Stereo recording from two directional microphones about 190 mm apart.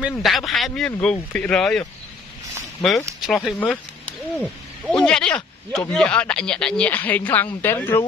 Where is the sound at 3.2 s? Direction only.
5° left (ahead or behind).